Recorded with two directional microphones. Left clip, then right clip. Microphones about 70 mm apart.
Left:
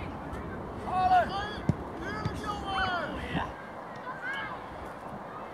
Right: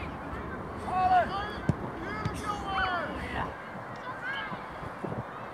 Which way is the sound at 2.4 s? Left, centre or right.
Left.